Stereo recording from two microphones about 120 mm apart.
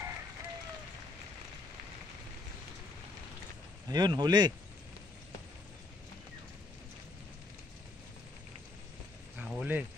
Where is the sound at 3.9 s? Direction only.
35° right (ahead or behind).